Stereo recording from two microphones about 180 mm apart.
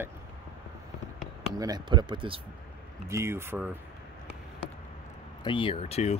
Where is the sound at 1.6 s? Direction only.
20° right (ahead or behind).